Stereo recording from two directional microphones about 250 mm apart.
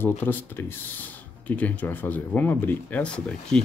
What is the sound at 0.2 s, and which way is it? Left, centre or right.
Speech, centre.